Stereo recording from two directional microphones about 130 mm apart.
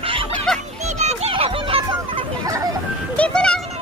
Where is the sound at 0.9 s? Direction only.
55° right (ahead or behind).